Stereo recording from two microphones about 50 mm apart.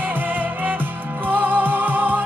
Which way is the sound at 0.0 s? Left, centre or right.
Right.